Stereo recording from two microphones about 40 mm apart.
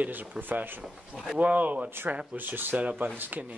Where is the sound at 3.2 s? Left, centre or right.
Right.